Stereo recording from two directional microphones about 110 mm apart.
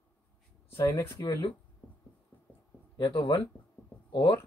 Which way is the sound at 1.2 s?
35° left (ahead or behind).